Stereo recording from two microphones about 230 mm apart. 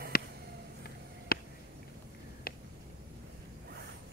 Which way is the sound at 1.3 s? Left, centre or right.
Left.